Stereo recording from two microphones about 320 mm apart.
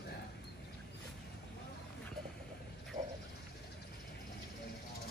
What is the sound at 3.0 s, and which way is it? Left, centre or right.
Bow-wow, centre.